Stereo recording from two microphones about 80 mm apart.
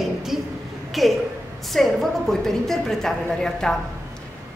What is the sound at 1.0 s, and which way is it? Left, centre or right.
A woman's voice, centre.